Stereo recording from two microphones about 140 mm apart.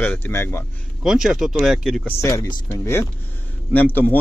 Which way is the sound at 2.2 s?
25° left (ahead or behind).